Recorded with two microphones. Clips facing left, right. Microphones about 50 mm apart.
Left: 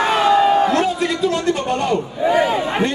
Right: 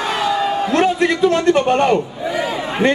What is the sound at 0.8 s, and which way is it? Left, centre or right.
A man's voice, right.